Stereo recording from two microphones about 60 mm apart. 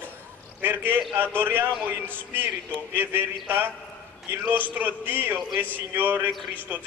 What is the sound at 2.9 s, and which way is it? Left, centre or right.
Speech, right.